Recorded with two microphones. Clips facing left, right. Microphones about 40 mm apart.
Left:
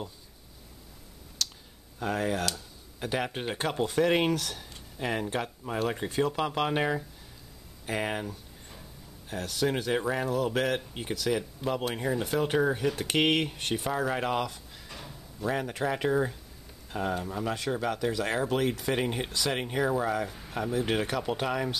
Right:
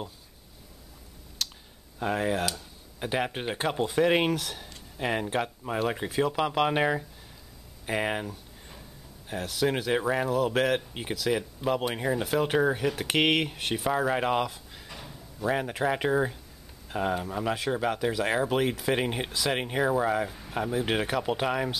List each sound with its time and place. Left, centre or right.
1.4 s clicking: centre
2.0 s speech: centre
7.8 s a sound: centre
9.3 s speech: centre